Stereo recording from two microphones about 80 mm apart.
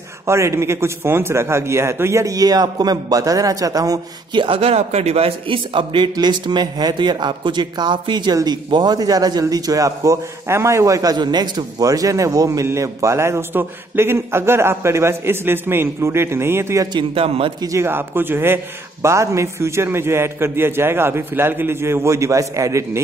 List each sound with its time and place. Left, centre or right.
0.3 s a man's voice: right
4.3 s a man's voice: right
6.1 s a man's voice: right